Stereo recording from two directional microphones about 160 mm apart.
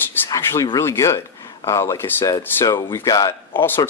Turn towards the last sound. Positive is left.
turn(degrees=15)  # may be behind; listen again after turning